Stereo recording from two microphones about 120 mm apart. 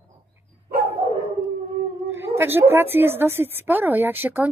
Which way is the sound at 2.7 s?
20° right (ahead or behind).